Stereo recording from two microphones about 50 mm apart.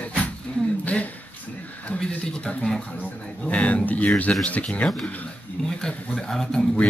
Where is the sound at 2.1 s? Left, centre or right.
Left.